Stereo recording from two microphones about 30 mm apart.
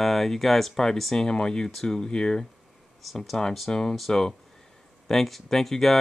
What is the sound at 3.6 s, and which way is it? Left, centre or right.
Speech, left.